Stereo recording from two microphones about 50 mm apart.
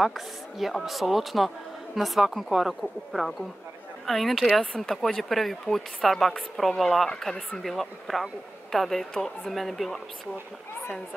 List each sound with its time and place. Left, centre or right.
0.0 s speech: centre